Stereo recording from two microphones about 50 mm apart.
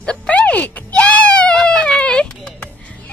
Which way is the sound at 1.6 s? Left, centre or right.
Centre.